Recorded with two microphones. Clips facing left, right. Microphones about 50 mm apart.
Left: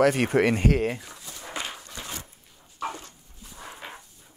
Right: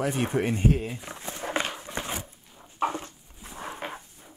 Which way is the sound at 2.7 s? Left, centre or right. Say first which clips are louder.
Right 5 dB; right.